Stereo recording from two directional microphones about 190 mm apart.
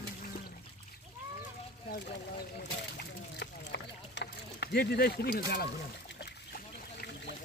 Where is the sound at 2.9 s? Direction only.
65° left (ahead or behind).